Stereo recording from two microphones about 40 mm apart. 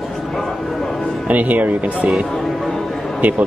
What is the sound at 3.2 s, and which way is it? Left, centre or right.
Speech, right.